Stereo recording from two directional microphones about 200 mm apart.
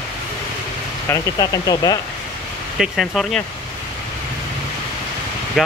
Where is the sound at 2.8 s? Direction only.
Centre (ahead or behind).